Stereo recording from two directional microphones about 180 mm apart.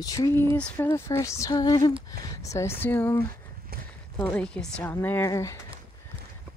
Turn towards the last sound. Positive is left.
turn(degrees=15)  # may be behind; listen again after turning